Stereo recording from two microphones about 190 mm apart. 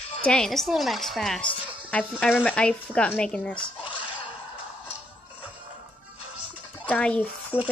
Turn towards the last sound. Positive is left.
turn(degrees=5)  # may be behind; listen again after turning